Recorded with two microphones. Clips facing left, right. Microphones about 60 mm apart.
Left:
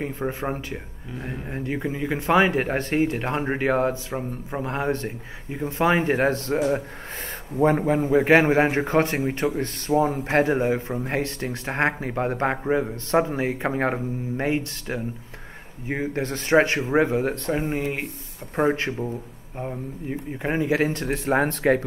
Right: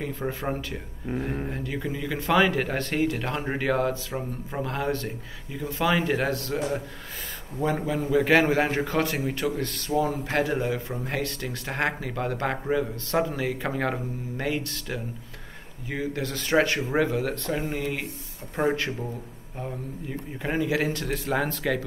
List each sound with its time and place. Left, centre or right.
0.2 s a man's voice: centre
1.5 s speech: left
4.1 s a man's voice: centre
4.6 s a man's voice: left
19.6 s a man's voice: left